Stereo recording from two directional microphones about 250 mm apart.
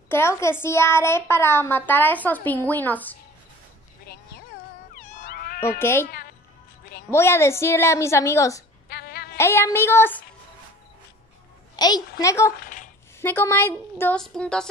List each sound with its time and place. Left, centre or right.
0.1 s a child's voice: centre
4.9 s cat: left
5.8 s a child's voice: centre
7.1 s a child's voice: centre
8.8 s a sound: left
9.4 s a child's voice: centre
11.7 s a child's voice: centre
12.5 s a sound: left
13.2 s a child's voice: centre